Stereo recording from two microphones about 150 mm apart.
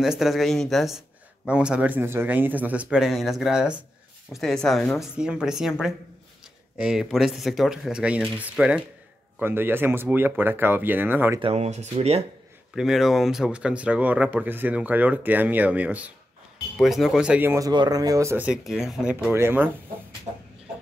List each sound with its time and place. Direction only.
0.0 s speech: centre (ahead or behind)
11.4 s speech: 45° right (ahead or behind)
12.7 s speech: centre (ahead or behind)
17.6 s speech: 25° right (ahead or behind); by 19.1 s 5° right (ahead or behind)
19.3 s speech: 15° right (ahead or behind)